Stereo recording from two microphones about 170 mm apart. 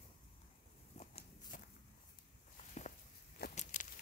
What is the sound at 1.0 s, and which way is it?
Walk, 40° left (ahead or behind).